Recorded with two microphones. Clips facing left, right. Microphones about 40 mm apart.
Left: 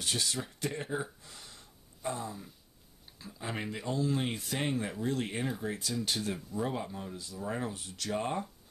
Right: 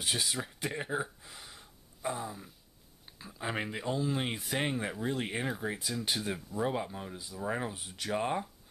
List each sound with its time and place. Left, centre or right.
0.0 s speech: centre
1.2 s gasp: centre
2.0 s speech: centre